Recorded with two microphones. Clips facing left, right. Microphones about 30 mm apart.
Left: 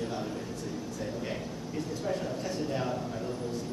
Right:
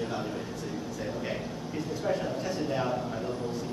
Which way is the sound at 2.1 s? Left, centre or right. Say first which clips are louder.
Right 4 dB; centre.